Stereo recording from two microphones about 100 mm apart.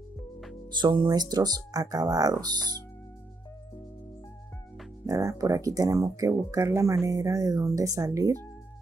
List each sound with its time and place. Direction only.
0.7 s speech: 45° right (ahead or behind)
5.0 s speech: 35° right (ahead or behind)